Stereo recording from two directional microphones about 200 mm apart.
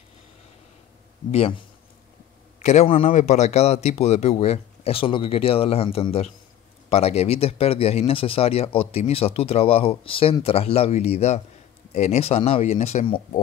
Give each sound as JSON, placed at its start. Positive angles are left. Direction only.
{"t": 1.3, "sound": "speech", "side_deg": 30}
{"t": 2.6, "sound": "a man's voice", "side_deg": 35}